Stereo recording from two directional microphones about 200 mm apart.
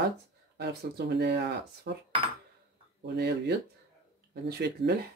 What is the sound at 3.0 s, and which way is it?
Speech, 55° right (ahead or behind).